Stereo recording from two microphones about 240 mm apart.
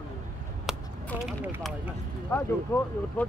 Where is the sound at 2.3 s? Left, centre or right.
Centre.